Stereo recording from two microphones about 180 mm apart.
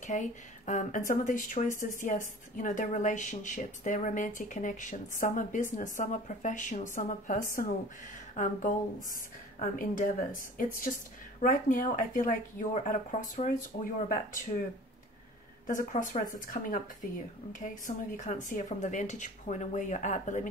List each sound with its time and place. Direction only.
0.0 s speech: 45° left (ahead or behind)
15.6 s speech: 45° left (ahead or behind)